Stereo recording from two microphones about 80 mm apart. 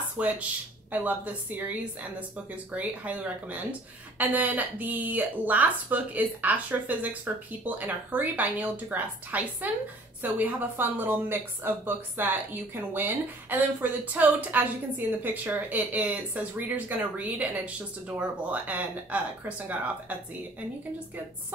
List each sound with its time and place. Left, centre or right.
0.2 s a woman's voice: centre